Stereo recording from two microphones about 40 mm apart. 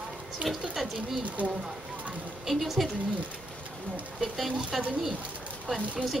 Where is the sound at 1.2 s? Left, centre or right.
Right.